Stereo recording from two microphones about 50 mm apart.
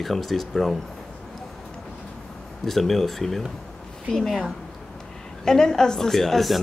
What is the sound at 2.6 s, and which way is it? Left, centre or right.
A woman's voice, centre.